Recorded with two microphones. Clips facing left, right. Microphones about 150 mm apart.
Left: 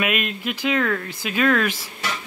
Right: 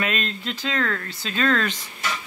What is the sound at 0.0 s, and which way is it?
Speech, 15° left (ahead or behind).